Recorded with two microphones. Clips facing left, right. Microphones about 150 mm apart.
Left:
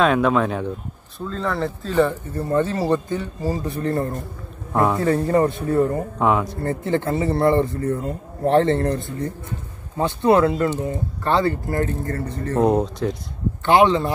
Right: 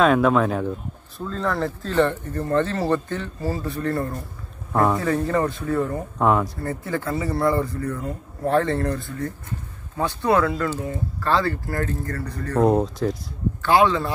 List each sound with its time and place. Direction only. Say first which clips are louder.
0.0 s speech: even; centre (ahead or behind); by 4.2 s 20° left (ahead or behind)
4.7 s speech: left 1 dB; 5° left (ahead or behind)
5.0 s speech: left 4 dB; 30° left (ahead or behind)
6.1 s speech: right 2 dB; centre (ahead or behind)
6.6 s speech: left 5 dB; 30° left (ahead or behind)
12.6 s speech: even; centre (ahead or behind)
13.6 s speech: left 3 dB; 20° left (ahead or behind)